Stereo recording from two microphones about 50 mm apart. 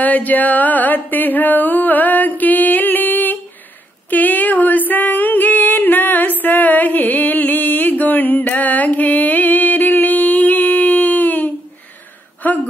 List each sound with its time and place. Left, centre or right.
0.0 s music: left
4.1 s female singing: left
6.4 s music: left
12.4 s a sound: left